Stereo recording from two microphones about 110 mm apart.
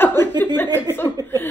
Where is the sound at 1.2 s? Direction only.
30° right (ahead or behind).